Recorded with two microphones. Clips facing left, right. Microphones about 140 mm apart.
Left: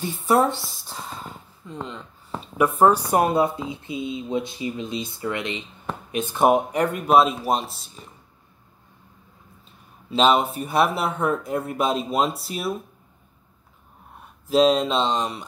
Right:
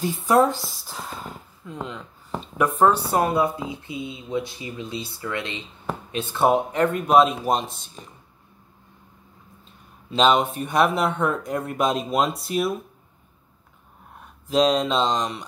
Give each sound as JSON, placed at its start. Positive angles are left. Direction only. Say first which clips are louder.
{"t": 0.5, "sound": "speech", "louder": "right 1 dB", "side_deg": 0}
{"t": 3.1, "sound": "speech", "louder": "left 1 dB", "side_deg": 20}
{"t": 10.1, "sound": "speech", "louder": "even", "side_deg": 5}
{"t": 14.5, "sound": "speech", "louder": "left 2 dB", "side_deg": 5}